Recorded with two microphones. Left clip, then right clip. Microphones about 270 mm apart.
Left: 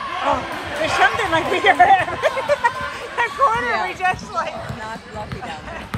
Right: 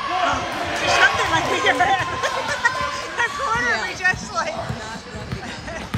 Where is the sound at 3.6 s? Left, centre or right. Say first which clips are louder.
Even; left.